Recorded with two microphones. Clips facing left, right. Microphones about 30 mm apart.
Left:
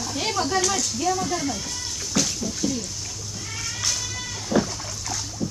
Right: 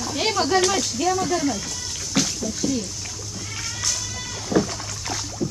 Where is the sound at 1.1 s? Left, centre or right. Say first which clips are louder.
Right 3 dB; centre.